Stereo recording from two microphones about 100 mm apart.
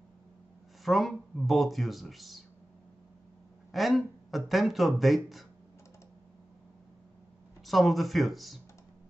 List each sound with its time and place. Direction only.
0.8 s speech: centre (ahead or behind)
3.7 s speech: centre (ahead or behind)
7.6 s speech: centre (ahead or behind)